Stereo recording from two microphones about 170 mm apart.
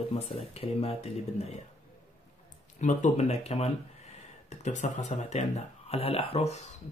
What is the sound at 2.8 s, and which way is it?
Speech, 45° left (ahead or behind).